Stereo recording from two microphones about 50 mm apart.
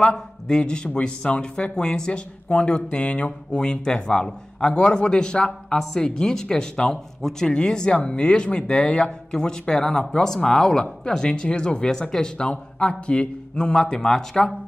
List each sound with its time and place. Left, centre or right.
0.0 s speech: centre